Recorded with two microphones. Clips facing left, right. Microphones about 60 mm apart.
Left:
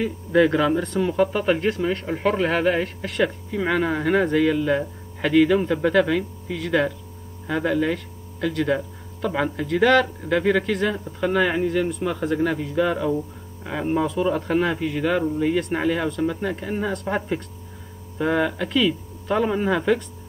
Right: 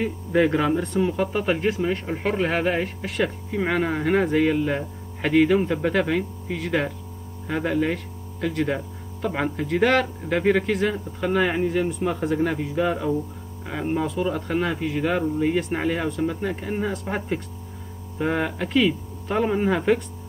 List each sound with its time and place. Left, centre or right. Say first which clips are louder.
0.0 s speech: left 2 dB; centre
13.7 s speech: left 2 dB; centre